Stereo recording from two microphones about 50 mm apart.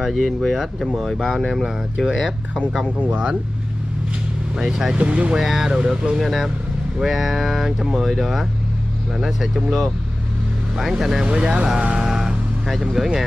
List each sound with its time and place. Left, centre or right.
0.0 s speech: centre
1.5 s speech: centre
3.0 s speech: right
4.6 s speech: centre
4.9 s speech: right
5.3 s speech: centre
5.7 s speech: centre
6.1 s speech: centre
10.8 s speech: centre
12.6 s speech: centre